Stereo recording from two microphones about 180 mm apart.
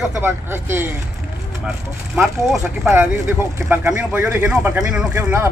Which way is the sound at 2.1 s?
Centre (ahead or behind).